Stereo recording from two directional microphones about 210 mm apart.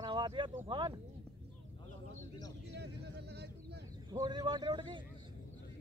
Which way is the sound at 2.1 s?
15° left (ahead or behind).